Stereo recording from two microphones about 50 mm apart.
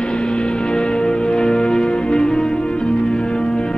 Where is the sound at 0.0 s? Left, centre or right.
Centre.